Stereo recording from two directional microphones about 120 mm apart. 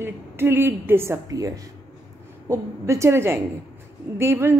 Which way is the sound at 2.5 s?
25° right (ahead or behind).